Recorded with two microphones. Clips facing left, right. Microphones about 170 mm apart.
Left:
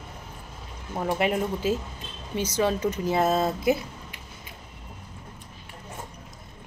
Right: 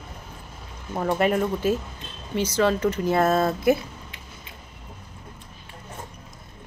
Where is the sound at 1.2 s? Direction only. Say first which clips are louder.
Right 3 dB; 45° right (ahead or behind).